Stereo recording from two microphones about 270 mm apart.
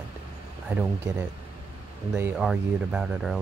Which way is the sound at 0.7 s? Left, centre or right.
Centre.